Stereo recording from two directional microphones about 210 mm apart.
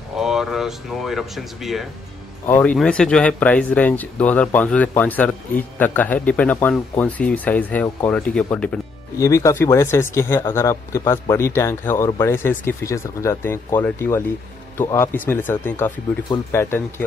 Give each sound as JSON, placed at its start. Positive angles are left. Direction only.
{"t": 0.1, "sound": "speech", "side_deg": 0}